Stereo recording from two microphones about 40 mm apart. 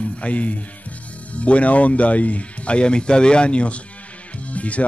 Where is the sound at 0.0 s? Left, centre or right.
Left.